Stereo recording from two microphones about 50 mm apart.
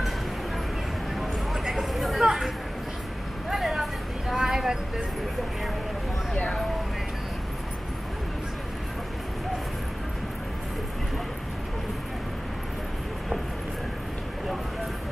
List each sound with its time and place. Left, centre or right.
1.1 s a sound: centre
3.4 s vehicle: centre
6.3 s vehicle: left